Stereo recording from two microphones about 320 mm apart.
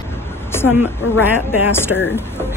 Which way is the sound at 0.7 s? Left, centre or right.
Left.